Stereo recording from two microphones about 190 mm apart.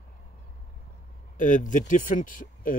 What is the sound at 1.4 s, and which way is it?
Speech, 45° left (ahead or behind).